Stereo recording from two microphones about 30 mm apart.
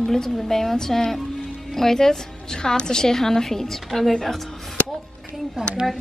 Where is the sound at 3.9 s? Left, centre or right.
Centre.